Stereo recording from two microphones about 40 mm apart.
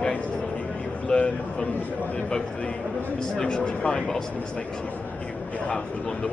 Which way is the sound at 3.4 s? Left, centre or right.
Left.